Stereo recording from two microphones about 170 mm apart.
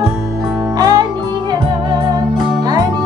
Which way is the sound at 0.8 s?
25° right (ahead or behind).